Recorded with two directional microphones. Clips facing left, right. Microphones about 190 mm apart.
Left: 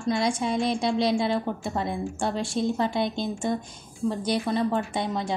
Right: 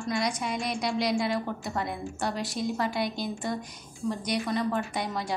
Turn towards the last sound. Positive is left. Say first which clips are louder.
# left 3 dB
turn(degrees=25)  # may be behind; listen again after turning